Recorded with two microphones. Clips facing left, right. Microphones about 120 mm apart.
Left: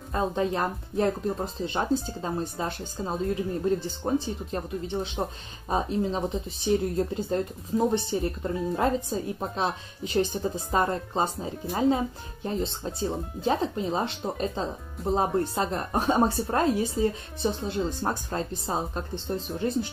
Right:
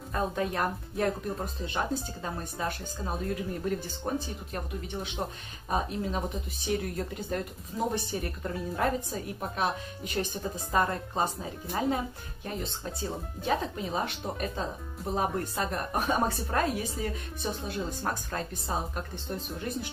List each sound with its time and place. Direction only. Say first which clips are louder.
0.1 s speech: left 4 dB; 25° left (ahead or behind)